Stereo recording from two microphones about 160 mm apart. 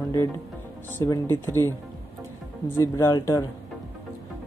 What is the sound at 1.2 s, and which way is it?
Speech, 15° left (ahead or behind).